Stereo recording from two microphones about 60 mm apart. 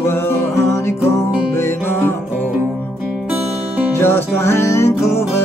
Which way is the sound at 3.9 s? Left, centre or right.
Left.